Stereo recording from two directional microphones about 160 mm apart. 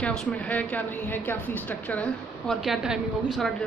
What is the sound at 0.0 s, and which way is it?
A woman's voice, 5° left (ahead or behind).